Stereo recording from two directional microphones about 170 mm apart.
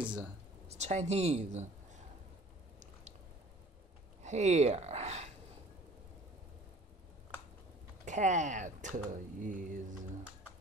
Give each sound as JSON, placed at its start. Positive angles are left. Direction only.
{"t": 0.7, "sound": "speech", "side_deg": -40}
{"t": 4.2, "sound": "speech", "side_deg": -40}
{"t": 8.0, "sound": "speech", "side_deg": -45}